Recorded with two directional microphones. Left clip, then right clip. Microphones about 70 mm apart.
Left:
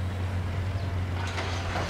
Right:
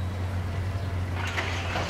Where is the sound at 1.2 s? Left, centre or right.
Right.